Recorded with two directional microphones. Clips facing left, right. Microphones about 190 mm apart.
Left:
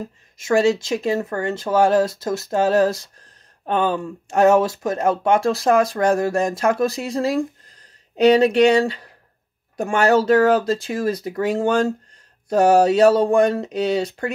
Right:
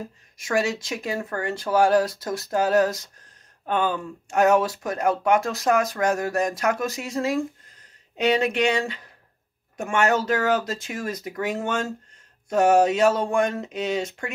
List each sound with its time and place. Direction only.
0.4 s speech: 25° left (ahead or behind)